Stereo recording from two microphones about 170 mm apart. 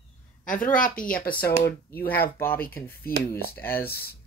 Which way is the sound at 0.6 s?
50° left (ahead or behind).